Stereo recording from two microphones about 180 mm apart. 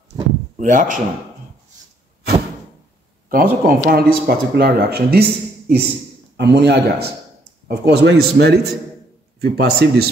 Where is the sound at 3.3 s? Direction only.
50° right (ahead or behind).